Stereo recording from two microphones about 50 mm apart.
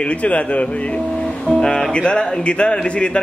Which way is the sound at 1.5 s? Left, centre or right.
Centre.